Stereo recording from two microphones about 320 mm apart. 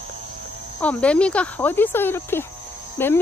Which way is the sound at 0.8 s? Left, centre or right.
Centre.